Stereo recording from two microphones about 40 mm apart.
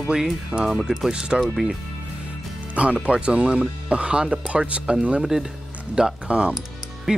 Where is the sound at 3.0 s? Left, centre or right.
Right.